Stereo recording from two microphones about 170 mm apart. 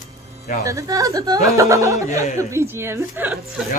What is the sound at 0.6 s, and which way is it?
Speech, 20° right (ahead or behind).